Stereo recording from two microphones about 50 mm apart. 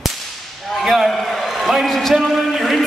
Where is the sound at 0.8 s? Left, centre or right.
Centre.